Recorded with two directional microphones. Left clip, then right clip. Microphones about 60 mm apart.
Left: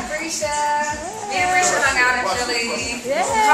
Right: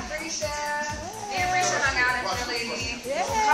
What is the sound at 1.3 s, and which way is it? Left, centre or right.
Music, centre.